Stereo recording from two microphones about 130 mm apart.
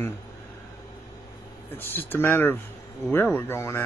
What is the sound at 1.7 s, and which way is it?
Speech, 15° left (ahead or behind).